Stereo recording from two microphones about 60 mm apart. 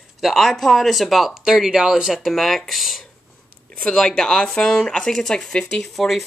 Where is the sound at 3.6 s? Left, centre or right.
Centre.